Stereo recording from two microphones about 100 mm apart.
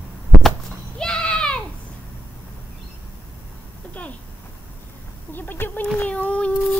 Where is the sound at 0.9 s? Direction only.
10° left (ahead or behind).